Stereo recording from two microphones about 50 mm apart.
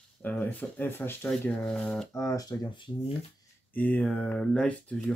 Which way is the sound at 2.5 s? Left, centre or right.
Left.